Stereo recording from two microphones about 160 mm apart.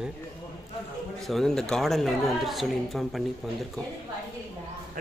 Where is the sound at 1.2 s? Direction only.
Centre (ahead or behind).